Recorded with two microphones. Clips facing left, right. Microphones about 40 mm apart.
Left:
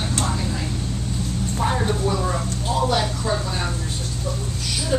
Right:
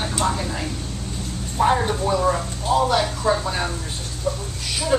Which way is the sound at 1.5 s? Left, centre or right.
Centre.